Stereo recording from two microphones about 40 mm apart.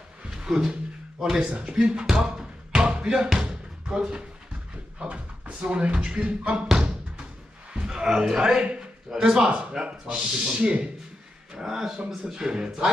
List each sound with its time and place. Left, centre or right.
0.3 s a sound: centre
1.4 s speech: right
2.2 s basketball bounce: right
3.3 s music: centre
5.0 s speech: right
7.7 s a man's voice: centre
11.5 s speech: centre